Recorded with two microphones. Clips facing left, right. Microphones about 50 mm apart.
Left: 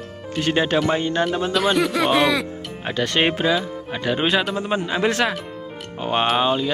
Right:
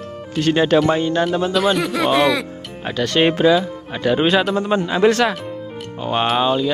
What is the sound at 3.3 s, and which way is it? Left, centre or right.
Speech, centre.